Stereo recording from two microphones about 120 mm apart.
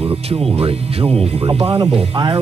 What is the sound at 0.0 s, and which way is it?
Speech, 55° right (ahead or behind).